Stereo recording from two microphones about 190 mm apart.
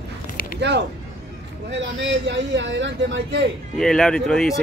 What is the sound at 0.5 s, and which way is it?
A man's voice, 65° right (ahead or behind).